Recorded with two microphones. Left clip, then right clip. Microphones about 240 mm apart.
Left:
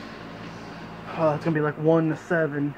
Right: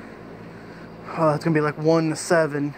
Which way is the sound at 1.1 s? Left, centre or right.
Right.